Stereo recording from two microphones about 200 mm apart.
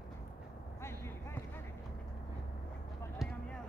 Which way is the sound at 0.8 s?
15° left (ahead or behind).